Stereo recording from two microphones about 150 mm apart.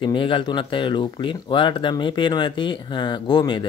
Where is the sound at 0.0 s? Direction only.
35° left (ahead or behind).